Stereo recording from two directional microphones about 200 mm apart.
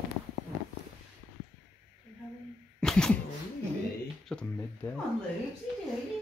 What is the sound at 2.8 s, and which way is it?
Sneeze, 5° left (ahead or behind).